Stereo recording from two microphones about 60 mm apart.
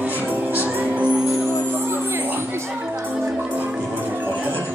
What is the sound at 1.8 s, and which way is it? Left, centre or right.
Music, right.